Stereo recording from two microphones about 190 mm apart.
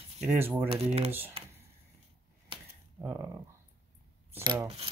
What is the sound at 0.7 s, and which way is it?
Speech, 35° right (ahead or behind).